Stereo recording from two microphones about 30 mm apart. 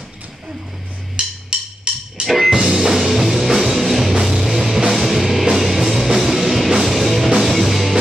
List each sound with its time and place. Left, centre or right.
1.2 s music: right
2.2 s music: centre
2.6 s music: centre